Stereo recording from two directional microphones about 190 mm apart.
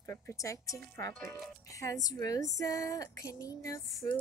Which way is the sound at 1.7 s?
15° left (ahead or behind).